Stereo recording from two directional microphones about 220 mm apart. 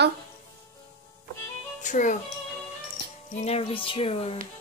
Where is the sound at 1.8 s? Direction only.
35° left (ahead or behind).